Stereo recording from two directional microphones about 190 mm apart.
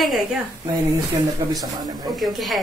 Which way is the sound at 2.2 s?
Centre (ahead or behind).